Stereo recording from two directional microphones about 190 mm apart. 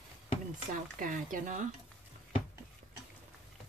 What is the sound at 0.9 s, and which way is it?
Speech, 45° right (ahead or behind).